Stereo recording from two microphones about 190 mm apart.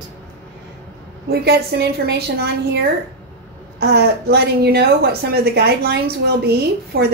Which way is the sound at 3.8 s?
60° right (ahead or behind).